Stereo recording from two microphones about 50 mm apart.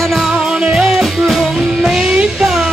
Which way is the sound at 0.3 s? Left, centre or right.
Centre.